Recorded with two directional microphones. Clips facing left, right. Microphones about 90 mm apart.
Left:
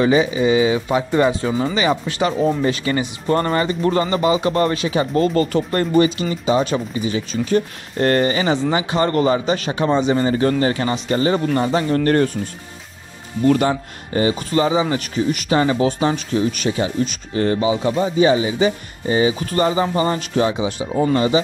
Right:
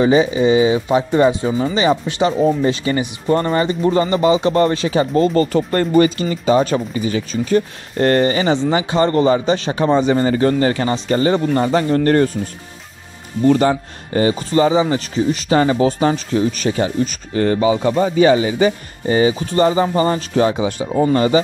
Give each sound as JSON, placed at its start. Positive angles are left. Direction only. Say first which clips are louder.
{"t": 0.0, "sound": "speech", "louder": "right 2 dB", "side_deg": -30}
{"t": 13.6, "sound": "speech", "louder": "right 3 dB", "side_deg": -35}
{"t": 19.4, "sound": "speech", "louder": "right 3 dB", "side_deg": -30}